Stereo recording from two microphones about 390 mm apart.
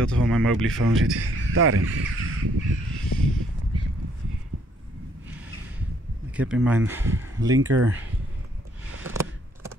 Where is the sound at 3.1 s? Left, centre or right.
Left.